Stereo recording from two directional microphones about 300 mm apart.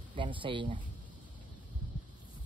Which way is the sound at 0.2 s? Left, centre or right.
Centre.